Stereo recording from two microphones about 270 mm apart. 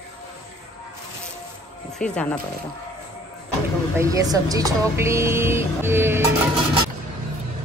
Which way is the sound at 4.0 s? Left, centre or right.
Centre.